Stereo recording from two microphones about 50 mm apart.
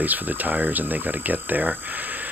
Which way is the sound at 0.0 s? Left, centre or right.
Right.